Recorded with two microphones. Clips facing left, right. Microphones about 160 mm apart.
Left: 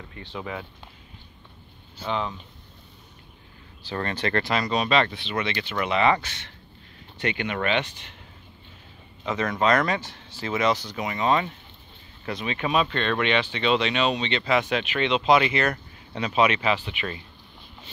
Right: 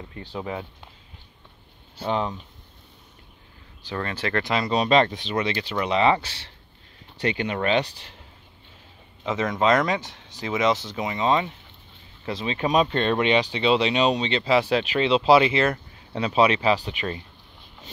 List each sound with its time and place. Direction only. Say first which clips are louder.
0.1 s speech: right 2 dB; 35° right (ahead or behind)
2.0 s speech: right 3 dB; 40° right (ahead or behind)
3.8 s speech: left 1 dB; 5° right (ahead or behind)
4.4 s speech: right 3 dB; 20° right (ahead or behind)
9.4 s speech: right 1 dB; 20° right (ahead or behind)
9.9 s speech: right 1 dB; centre (ahead or behind)
10.4 s speech: right 1 dB; 20° right (ahead or behind); by 17.2 s 35° right (ahead or behind)